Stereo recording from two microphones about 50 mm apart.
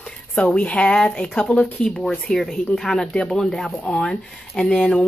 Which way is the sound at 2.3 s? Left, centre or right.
Centre.